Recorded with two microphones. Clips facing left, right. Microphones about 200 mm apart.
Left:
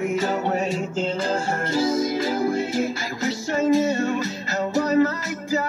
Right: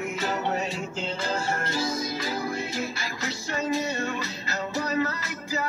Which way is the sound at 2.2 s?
50° left (ahead or behind).